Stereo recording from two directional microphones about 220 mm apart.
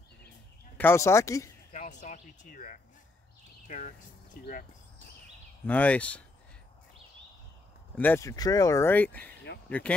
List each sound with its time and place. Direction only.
0.7 s speech: 10° left (ahead or behind)
1.7 s a sound: 35° left (ahead or behind)
5.7 s speech: 5° left (ahead or behind)
7.9 s speech: 10° left (ahead or behind)